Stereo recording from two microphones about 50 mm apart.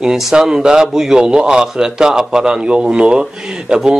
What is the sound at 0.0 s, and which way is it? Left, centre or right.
A man's voice, centre.